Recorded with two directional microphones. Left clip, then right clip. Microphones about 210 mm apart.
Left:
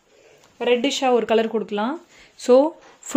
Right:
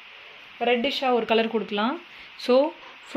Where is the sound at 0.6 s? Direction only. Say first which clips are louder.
Left 3 dB; 55° left (ahead or behind); by 1.5 s 40° left (ahead or behind).